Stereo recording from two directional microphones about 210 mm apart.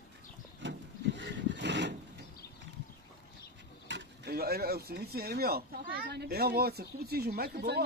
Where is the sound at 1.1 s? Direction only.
60° right (ahead or behind).